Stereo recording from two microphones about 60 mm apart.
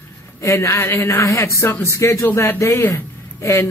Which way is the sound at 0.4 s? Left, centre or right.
Left.